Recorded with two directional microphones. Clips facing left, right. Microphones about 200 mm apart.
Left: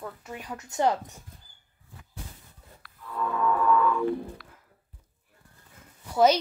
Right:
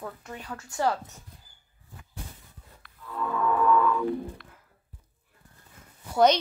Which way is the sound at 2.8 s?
5° left (ahead or behind).